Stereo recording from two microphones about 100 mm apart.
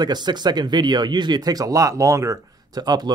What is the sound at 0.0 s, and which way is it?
Speech, 45° right (ahead or behind).